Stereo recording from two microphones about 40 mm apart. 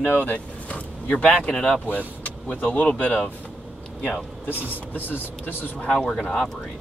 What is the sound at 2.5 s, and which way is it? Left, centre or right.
Speech, left.